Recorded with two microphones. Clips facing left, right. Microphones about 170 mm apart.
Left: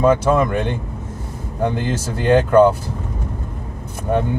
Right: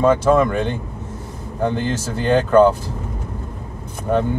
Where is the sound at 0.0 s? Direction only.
10° left (ahead or behind).